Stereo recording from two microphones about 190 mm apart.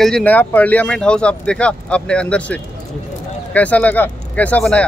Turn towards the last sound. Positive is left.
turn(degrees=5)  # may be behind; listen again after turning